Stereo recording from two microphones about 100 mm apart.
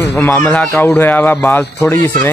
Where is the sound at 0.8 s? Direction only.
20° left (ahead or behind).